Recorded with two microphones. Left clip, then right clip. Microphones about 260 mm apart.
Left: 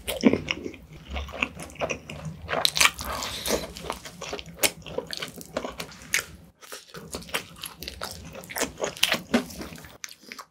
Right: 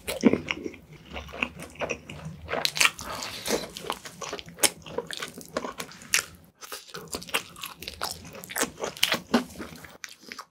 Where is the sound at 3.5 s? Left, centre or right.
Centre.